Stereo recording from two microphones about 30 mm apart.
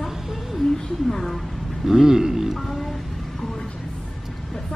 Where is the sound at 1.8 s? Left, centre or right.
Centre.